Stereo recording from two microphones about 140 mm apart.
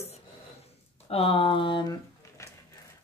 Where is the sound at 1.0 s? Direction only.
45° left (ahead or behind).